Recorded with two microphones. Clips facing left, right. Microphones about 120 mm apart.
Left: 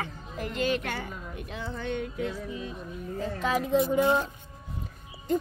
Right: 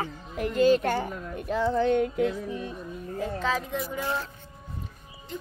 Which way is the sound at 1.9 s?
55° right (ahead or behind).